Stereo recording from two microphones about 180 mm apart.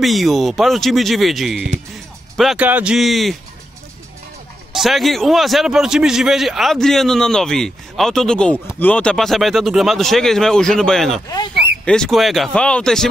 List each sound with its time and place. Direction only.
0.0 s a man's voice: centre (ahead or behind)
4.7 s a man's voice: centre (ahead or behind)
11.2 s speech: 20° left (ahead or behind)
11.8 s a man's voice: 5° left (ahead or behind)